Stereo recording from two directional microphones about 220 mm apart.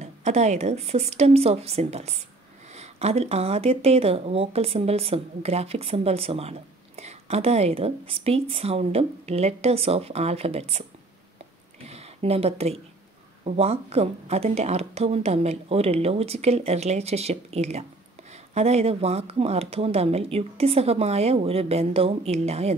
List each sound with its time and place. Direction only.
0.0 s speech: 30° right (ahead or behind)
11.9 s speech: 25° right (ahead or behind)